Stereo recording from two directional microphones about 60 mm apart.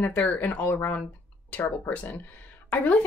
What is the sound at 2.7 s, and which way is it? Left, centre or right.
Speech, left.